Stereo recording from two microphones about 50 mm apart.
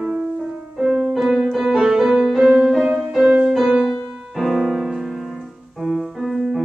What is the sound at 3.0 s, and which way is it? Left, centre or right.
Music, centre.